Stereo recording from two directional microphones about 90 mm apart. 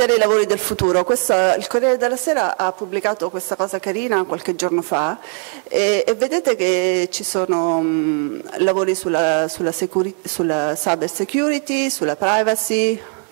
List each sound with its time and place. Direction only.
0.0 s speech: 10° left (ahead or behind)